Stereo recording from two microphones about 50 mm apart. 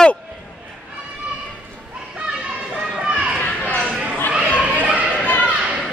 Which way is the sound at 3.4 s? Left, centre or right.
Left.